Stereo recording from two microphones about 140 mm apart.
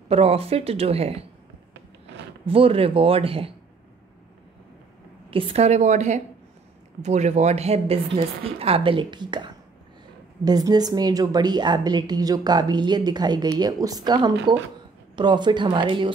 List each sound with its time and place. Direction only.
0.1 s speech: 45° right (ahead or behind)
2.4 s a man's voice: 40° right (ahead or behind)
5.3 s a woman's voice: 45° right (ahead or behind)